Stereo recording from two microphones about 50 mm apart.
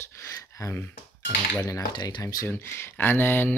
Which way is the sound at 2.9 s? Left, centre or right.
Left.